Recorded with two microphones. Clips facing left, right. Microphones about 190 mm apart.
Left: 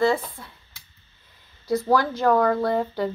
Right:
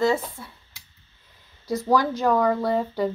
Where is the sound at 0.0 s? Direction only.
10° right (ahead or behind).